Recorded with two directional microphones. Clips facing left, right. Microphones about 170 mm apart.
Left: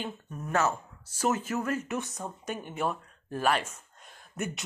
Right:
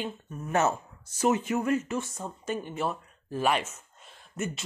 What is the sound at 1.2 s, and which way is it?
Speech, 10° right (ahead or behind).